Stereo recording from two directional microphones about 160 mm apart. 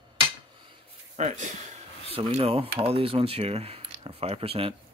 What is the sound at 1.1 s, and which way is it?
Speech, 45° right (ahead or behind).